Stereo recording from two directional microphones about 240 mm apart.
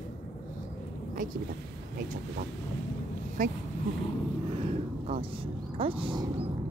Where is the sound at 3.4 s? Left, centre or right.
Right.